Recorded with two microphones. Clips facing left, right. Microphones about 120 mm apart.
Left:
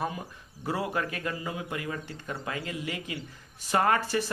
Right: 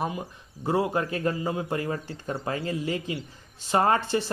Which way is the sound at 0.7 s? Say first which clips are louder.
Right 5 dB; 25° right (ahead or behind).